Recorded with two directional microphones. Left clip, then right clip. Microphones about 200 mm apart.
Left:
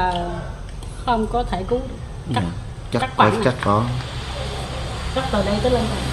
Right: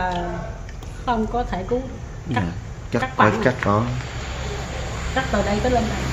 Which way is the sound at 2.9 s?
5° right (ahead or behind).